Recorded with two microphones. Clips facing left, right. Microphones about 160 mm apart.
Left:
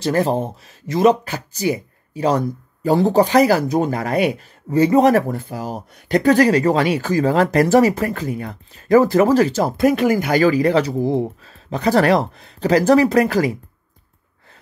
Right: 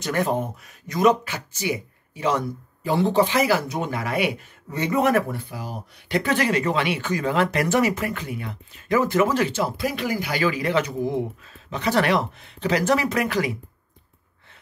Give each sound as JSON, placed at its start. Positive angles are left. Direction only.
{"t": 0.0, "sound": "speech", "side_deg": 30}